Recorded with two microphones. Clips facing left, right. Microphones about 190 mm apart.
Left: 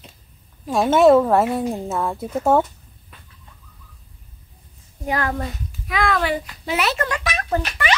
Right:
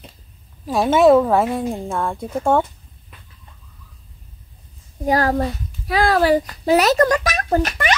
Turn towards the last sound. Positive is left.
turn(degrees=-45)  # may be behind; listen again after turning